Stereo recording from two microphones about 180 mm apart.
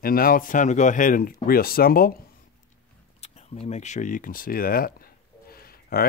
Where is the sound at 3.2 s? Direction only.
35° left (ahead or behind); by 6.1 s 55° left (ahead or behind).